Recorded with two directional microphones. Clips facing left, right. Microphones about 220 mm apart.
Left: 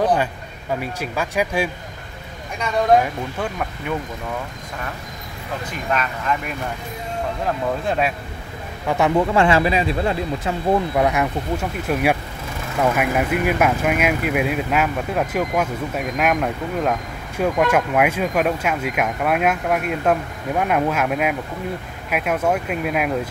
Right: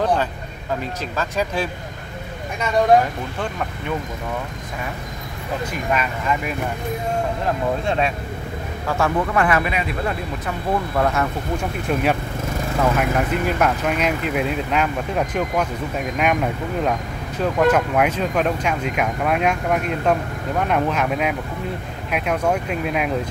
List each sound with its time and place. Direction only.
1.1 s speech: 10° left (ahead or behind)
5.7 s speech: 5° right (ahead or behind)
7.8 s speech: 5° left (ahead or behind)
8.8 s speech: 20° left (ahead or behind)
11.0 s speech: 15° left (ahead or behind)